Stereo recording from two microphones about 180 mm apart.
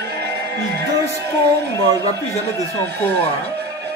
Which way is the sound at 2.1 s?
20° right (ahead or behind).